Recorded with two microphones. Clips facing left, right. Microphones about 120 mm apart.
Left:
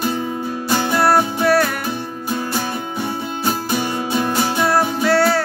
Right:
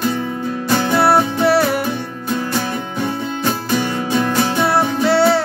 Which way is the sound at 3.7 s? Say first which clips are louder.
Right 5 dB; 15° left (ahead or behind).